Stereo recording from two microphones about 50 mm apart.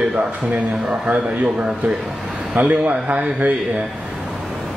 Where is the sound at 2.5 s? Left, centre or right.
Right.